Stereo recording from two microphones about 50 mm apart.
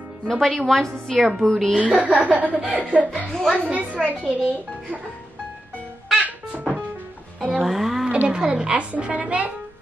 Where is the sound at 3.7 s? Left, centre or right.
Right.